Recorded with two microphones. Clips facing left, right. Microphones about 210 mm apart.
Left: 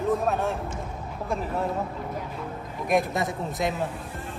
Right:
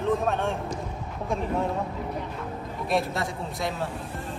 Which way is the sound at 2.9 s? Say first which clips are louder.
Left 3 dB; 15° left (ahead or behind).